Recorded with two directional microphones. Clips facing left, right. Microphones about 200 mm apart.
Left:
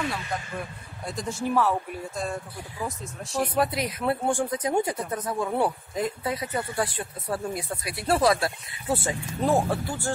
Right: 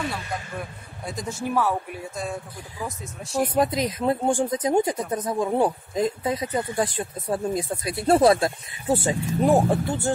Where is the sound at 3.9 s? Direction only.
20° right (ahead or behind).